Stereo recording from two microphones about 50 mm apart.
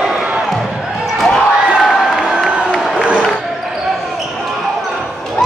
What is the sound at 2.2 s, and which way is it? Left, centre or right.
Crowd, centre.